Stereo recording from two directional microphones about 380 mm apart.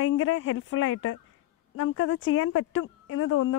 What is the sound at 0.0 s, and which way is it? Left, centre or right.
Speech, left.